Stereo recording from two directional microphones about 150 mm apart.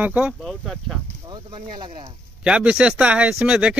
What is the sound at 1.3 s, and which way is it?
Speech, 30° right (ahead or behind).